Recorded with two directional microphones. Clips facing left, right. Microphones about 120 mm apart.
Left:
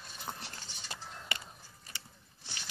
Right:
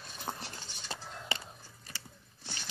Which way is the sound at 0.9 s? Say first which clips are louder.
Right 3 dB; 30° right (ahead or behind).